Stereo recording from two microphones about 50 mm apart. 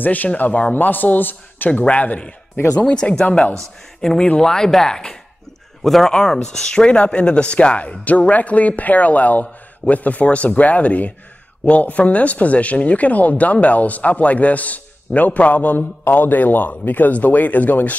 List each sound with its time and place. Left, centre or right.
0.0 s speech: left
4.0 s speech: centre; by 17.9 s left